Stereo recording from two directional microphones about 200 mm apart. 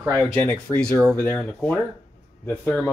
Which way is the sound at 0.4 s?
5° left (ahead or behind).